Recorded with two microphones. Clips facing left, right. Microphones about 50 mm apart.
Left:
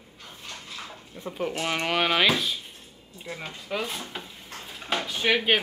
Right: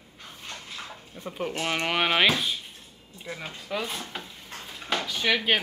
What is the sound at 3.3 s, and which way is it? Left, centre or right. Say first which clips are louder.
Speech: even; right.